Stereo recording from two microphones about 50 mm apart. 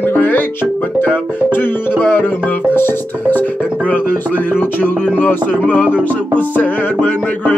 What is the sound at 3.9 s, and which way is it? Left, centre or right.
Music, left.